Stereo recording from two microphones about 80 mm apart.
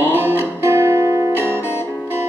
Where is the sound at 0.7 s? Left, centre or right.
Right.